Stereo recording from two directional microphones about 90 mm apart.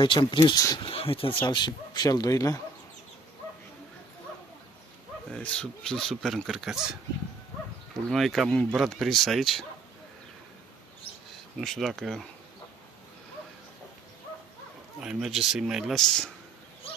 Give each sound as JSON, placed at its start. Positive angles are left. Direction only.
{"t": 0.0, "sound": "speech", "side_deg": 65}
{"t": 0.8, "sound": "speech", "side_deg": 90}
{"t": 1.4, "sound": "speech", "side_deg": 55}
{"t": 2.0, "sound": "speech", "side_deg": 40}
{"t": 5.3, "sound": "speech", "side_deg": 10}
{"t": 8.1, "sound": "speech", "side_deg": 0}
{"t": 11.6, "sound": "speech", "side_deg": 5}
{"t": 15.0, "sound": "speech", "side_deg": -5}